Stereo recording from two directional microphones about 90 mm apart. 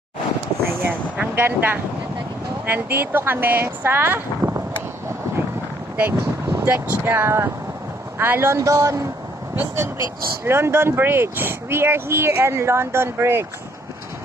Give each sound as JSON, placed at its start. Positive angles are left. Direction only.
{"t": 0.7, "sound": "vehicle", "side_deg": -25}
{"t": 1.1, "sound": "vehicle", "side_deg": -15}
{"t": 1.4, "sound": "speech", "side_deg": -25}
{"t": 6.1, "sound": "speech", "side_deg": -30}